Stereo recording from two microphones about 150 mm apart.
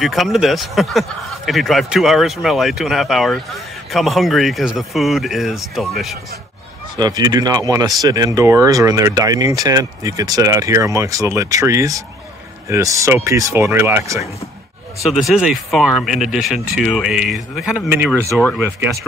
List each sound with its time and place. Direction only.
0.0 s speech: centre (ahead or behind)
7.0 s speech: 25° right (ahead or behind)
15.0 s speech: 5° right (ahead or behind)
17.8 s speech: 15° right (ahead or behind)